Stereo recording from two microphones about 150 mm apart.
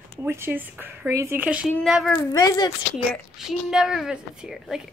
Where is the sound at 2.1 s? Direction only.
25° left (ahead or behind).